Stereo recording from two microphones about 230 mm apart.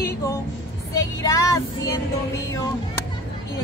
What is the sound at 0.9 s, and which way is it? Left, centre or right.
Child singing, centre.